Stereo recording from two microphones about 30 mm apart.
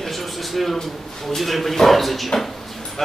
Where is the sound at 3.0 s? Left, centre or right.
Centre.